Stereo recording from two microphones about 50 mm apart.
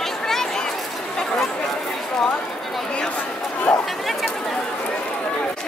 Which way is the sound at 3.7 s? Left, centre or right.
Left.